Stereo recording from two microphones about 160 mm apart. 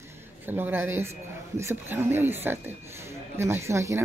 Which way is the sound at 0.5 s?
15° right (ahead or behind).